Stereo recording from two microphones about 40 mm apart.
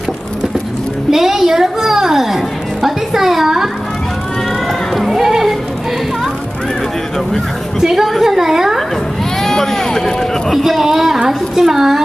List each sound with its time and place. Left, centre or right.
1.1 s music: centre
4.9 s run: centre
7.8 s a woman's voice: centre
9.4 s speech: centre